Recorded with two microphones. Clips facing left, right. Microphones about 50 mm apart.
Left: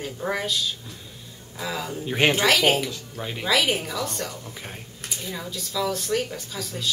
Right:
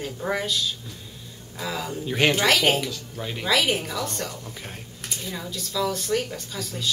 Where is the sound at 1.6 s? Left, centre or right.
Centre.